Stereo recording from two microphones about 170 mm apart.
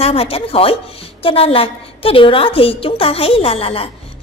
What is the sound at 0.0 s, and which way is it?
A woman's voice, 35° left (ahead or behind).